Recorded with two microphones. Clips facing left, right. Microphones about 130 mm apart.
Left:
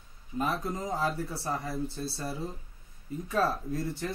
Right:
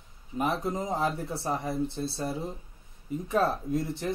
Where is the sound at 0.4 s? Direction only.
20° right (ahead or behind).